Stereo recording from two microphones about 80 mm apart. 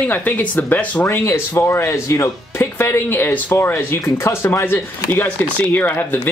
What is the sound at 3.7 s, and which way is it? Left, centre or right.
Speech, left.